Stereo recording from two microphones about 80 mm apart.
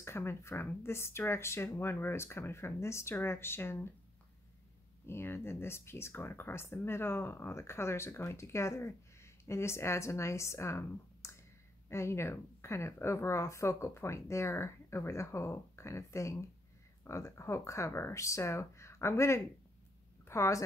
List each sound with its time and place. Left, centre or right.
0.0 s speech: left
5.0 s a woman's voice: left